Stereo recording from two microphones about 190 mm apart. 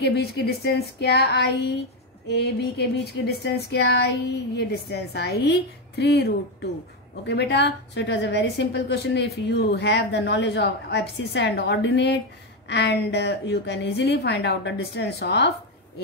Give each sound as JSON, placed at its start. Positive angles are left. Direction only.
{"t": 0.0, "sound": "a woman's voice", "side_deg": 60}